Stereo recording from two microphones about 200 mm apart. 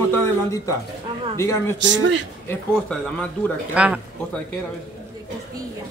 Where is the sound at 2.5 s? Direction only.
5° left (ahead or behind).